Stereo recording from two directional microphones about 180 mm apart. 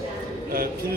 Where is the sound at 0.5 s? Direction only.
55° right (ahead or behind).